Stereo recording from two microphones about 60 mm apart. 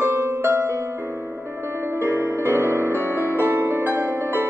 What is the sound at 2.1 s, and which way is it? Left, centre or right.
Music, right.